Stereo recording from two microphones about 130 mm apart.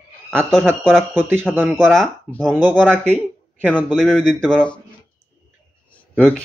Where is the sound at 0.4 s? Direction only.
5° left (ahead or behind).